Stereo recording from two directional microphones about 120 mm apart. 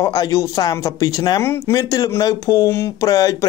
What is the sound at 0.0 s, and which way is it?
Speech, 30° left (ahead or behind).